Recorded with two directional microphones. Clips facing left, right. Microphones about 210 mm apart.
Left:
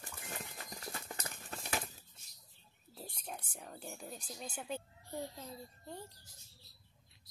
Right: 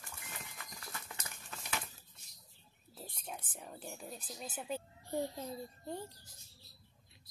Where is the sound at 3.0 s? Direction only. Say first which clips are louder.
Even; centre (ahead or behind).